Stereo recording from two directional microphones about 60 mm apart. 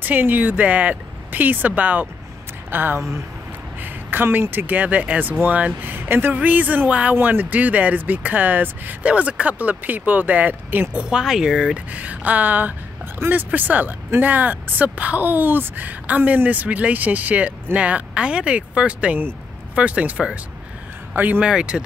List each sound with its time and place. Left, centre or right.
0.0 s speech: right
7.2 s speech: right
10.9 s speech: centre
11.9 s speech: right
21.1 s speech: right
21.4 s speech: centre